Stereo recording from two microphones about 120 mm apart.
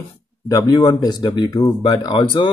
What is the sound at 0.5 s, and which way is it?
Speech, 30° left (ahead or behind).